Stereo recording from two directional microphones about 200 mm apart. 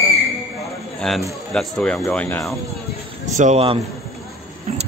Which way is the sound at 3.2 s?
40° right (ahead or behind).